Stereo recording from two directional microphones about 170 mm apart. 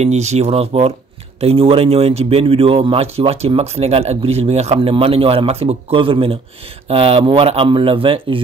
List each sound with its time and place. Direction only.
0.0 s speech: 40° right (ahead or behind)